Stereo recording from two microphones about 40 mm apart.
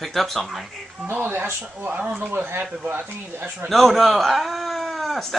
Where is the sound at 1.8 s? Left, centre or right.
Right.